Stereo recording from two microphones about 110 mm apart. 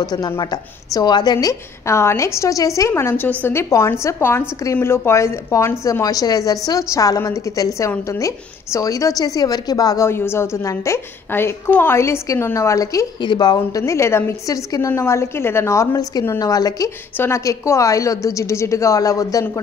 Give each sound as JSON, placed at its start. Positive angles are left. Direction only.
{"t": 0.0, "sound": "a woman's voice", "side_deg": 35}
{"t": 10.0, "sound": "a woman's voice", "side_deg": 25}
{"t": 13.2, "sound": "a woman's voice", "side_deg": 40}
{"t": 13.8, "sound": "a woman's voice", "side_deg": 25}